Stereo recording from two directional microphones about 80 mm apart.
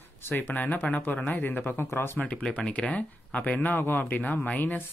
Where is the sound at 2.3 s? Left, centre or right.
Centre.